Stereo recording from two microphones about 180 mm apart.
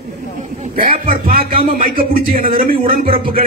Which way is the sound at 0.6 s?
50° right (ahead or behind).